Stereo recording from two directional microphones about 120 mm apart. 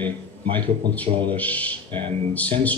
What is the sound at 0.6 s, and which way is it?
Speech, 15° left (ahead or behind).